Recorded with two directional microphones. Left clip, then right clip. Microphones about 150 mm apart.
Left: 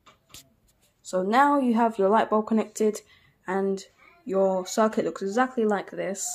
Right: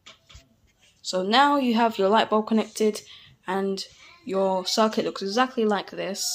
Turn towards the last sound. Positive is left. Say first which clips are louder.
# right 1 dB
turn(degrees=10)  # may be behind; listen again after turning